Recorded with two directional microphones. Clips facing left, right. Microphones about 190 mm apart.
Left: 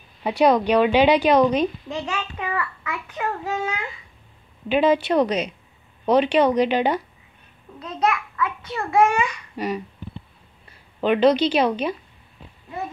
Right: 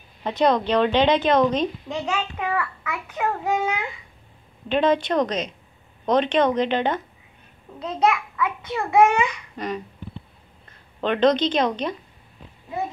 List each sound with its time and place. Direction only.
0.2 s a woman's voice: 10° left (ahead or behind)
1.9 s a child's voice: 15° right (ahead or behind)
4.6 s a woman's voice: 5° left (ahead or behind)
7.8 s a child's voice: 20° right (ahead or behind)
9.6 s a woman's voice: 10° left (ahead or behind)
11.0 s a woman's voice: 10° left (ahead or behind)